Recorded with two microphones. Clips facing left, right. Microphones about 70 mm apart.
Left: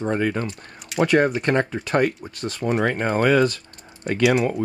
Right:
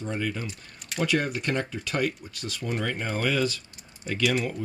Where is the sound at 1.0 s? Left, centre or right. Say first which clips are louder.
Left 8 dB; left.